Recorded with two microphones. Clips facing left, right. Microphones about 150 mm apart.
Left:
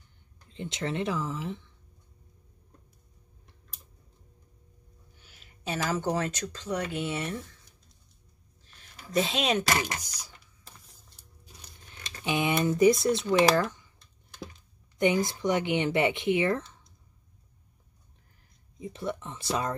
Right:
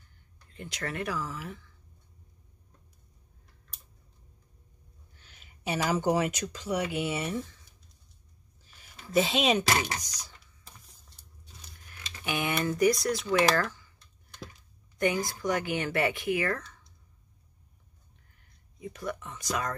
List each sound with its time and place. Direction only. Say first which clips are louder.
0.5 s speech: left 4 dB; 20° left (ahead or behind)
5.1 s a sound: even; 5° left (ahead or behind)
5.7 s speech: right 2 dB; 10° right (ahead or behind)
8.6 s speech: even; 5° right (ahead or behind)
10.0 s a sound: even; 10° left (ahead or behind)
11.9 s speech: left 3 dB; 20° left (ahead or behind)
15.0 s speech: left 3 dB; 20° left (ahead or behind)
18.8 s speech: left 2 dB; 25° left (ahead or behind)